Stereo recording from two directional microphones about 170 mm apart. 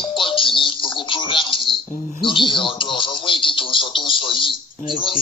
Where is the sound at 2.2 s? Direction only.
30° left (ahead or behind).